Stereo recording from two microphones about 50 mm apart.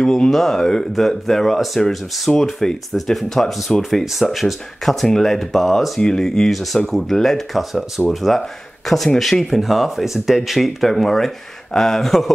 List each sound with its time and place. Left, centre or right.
0.0 s speech: centre
5.9 s speech: centre